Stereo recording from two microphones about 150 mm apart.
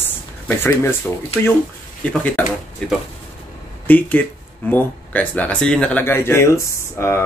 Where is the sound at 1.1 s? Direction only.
10° left (ahead or behind).